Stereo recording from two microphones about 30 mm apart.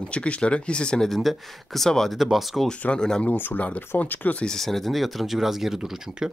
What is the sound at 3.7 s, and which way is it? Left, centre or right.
Speech, left.